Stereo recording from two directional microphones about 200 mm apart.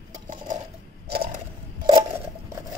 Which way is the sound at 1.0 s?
50° right (ahead or behind).